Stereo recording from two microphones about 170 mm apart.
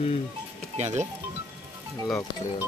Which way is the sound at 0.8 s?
40° right (ahead or behind).